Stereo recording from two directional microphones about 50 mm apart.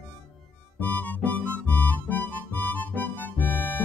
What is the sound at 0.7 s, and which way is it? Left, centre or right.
Music, left.